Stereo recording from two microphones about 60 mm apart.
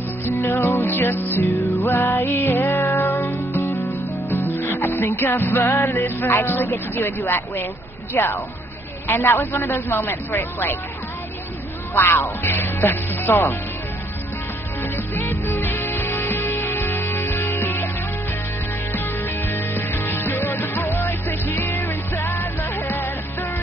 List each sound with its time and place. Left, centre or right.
0.3 s music: left
8.1 s a man's voice: left
11.9 s a man's voice: left
15.1 s music: left
18.9 s music: left